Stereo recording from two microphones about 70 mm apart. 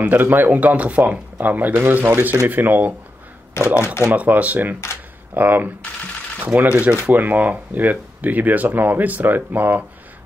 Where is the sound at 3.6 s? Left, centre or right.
Left.